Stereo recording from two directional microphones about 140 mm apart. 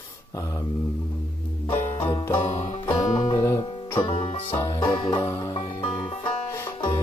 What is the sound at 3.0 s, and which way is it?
Music, 25° left (ahead or behind).